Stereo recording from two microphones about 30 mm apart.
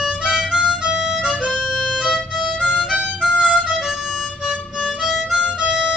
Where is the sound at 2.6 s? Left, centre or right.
Left.